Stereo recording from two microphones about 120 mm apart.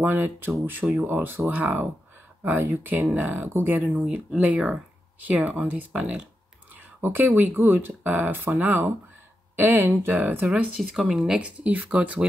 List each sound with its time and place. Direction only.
0.0 s speech: 15° right (ahead or behind)